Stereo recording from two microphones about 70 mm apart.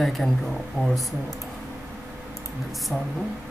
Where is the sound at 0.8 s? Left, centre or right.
Centre.